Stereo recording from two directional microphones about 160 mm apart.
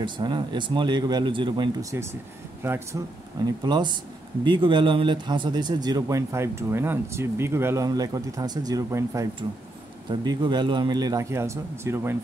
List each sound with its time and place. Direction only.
0.0 s a man's voice: 30° right (ahead or behind)
3.4 s a man's voice: 25° right (ahead or behind)